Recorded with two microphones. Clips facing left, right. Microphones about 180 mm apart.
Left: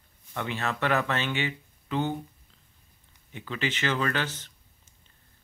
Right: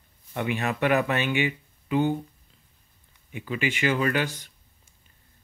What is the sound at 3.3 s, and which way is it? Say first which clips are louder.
Speech: right 3 dB; 10° right (ahead or behind).